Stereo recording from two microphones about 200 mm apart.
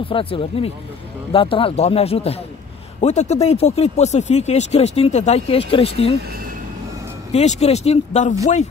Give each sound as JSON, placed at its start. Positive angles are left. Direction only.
{"t": 0.1, "sound": "speech", "side_deg": 25}
{"t": 7.3, "sound": "speech", "side_deg": 35}